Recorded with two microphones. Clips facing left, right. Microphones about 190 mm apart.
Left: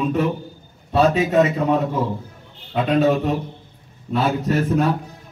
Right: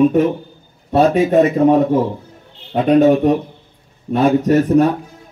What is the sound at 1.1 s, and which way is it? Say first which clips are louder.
Speech: right 5 dB; 50° right (ahead or behind).